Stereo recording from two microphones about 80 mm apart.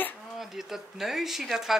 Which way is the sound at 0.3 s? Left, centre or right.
Centre.